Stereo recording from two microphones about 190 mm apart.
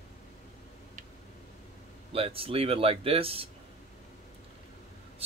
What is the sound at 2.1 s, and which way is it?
Speech, 30° right (ahead or behind).